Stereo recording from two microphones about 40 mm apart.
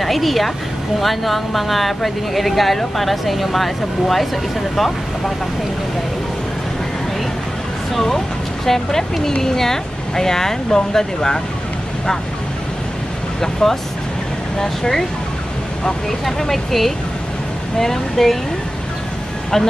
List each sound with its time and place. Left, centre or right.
0.0 s a woman's voice: centre
7.9 s speech: centre
13.4 s speech: centre